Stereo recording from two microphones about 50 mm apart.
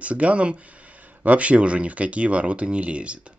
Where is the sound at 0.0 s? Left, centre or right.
Right.